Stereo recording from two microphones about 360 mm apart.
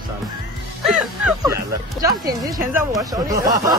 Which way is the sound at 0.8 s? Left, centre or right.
Centre.